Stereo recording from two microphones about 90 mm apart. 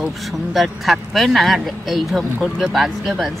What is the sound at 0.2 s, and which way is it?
Speech, centre (ahead or behind).